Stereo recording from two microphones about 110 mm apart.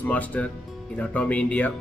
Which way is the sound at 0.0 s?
15° left (ahead or behind).